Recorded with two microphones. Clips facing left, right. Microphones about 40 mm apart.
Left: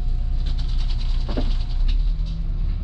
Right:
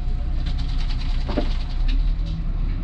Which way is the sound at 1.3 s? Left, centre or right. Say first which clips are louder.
Right 3 dB; centre.